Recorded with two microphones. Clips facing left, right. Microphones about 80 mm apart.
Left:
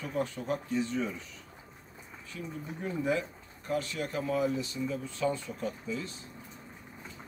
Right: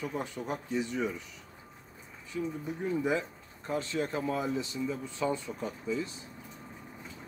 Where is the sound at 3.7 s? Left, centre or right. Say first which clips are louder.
Right 1 dB; right.